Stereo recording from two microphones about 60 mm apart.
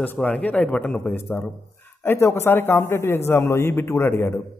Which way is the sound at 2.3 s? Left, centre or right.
Left.